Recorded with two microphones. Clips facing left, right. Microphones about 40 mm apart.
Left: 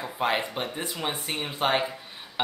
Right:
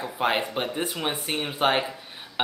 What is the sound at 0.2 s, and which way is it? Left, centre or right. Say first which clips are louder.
Speech: right 2 dB; right.